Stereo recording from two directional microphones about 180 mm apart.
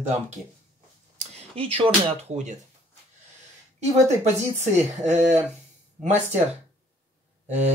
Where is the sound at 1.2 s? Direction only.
30° right (ahead or behind).